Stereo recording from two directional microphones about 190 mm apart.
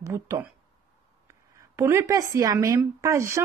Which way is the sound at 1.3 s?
15° right (ahead or behind).